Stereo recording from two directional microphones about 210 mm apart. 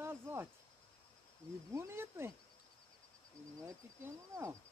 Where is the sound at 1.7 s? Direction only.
10° right (ahead or behind).